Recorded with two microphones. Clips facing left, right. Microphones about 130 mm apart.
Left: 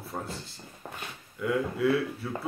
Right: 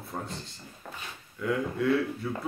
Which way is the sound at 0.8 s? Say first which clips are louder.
Left 1 dB; 30° left (ahead or behind).